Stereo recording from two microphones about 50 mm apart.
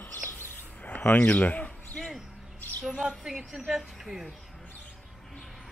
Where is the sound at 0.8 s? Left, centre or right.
Left.